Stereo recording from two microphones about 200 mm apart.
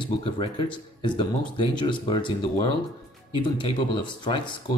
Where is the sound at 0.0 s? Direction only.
25° left (ahead or behind).